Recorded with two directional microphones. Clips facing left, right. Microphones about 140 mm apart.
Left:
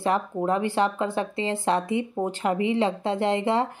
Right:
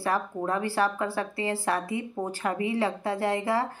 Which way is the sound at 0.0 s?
20° left (ahead or behind).